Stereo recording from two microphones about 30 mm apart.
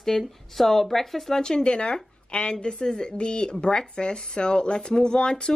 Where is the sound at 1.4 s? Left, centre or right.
Left.